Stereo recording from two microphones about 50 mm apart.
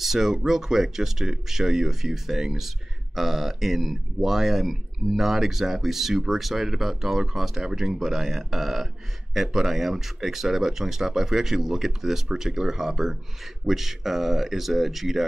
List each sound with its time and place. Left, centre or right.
0.0 s speech: centre